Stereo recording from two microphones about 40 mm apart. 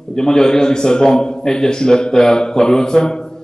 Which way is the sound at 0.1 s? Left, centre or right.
Centre.